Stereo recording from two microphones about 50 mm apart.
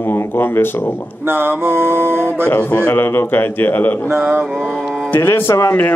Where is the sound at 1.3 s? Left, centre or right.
Right.